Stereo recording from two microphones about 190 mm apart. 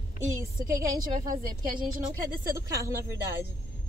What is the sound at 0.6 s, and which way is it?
Speech, 50° right (ahead or behind).